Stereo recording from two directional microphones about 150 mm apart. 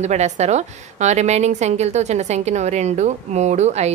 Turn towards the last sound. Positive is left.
turn(degrees=-50)  # may be behind; listen again after turning